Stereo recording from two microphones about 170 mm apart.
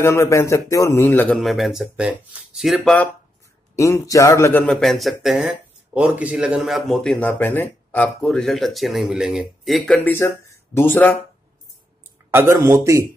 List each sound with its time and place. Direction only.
0.0 s speech: 15° left (ahead or behind)
3.7 s speech: 15° left (ahead or behind); by 9.9 s centre (ahead or behind)
9.9 s speech: 15° left (ahead or behind)
12.3 s speech: 15° right (ahead or behind)